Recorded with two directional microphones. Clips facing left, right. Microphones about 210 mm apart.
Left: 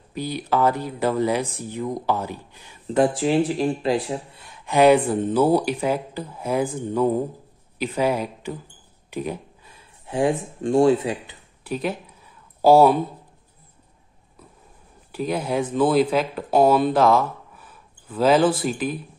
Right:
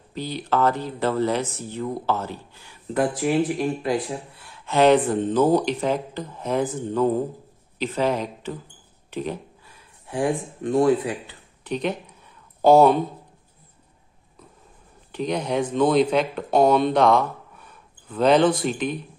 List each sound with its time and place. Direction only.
0.1 s speech: 10° left (ahead or behind)
9.7 s speech: 25° left (ahead or behind)
11.6 s speech: 5° left (ahead or behind)
15.1 s speech: 5° left (ahead or behind)